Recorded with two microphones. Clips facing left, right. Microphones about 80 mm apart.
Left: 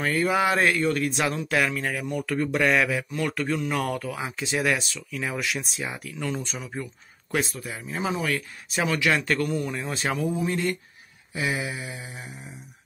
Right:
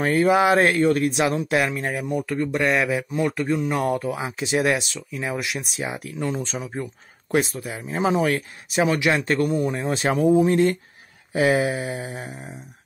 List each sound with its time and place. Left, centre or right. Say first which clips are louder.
0.0 s speech: right 5 dB; right
2.3 s speech: even; centre
2.9 s speech: right 4 dB; centre
5.4 s speech: right 1 dB; centre
5.8 s speech: right 4 dB; right
6.7 s speech: right 4 dB; right
8.7 s speech: right 4 dB; right
11.3 s mantra: right 9 dB; right